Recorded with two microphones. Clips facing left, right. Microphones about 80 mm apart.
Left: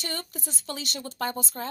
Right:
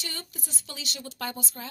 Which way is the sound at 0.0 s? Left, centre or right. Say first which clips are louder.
Left 5 dB; left.